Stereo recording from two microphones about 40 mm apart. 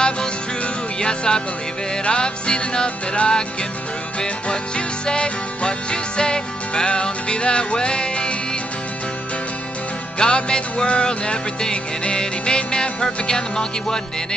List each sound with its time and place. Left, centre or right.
1.0 s music: left
10.1 s music: left